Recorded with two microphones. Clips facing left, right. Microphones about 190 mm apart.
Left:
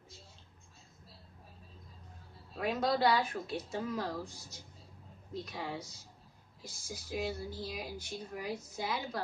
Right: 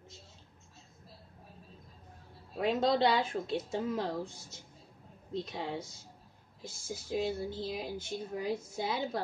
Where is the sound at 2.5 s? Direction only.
25° right (ahead or behind).